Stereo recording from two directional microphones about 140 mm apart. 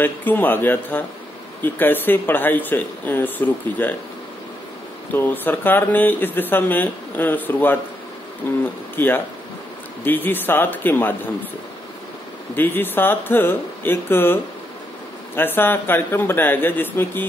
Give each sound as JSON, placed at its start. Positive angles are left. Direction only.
{"t": 0.0, "sound": "speech", "side_deg": 15}
{"t": 5.1, "sound": "speech", "side_deg": 15}
{"t": 12.5, "sound": "speech", "side_deg": 15}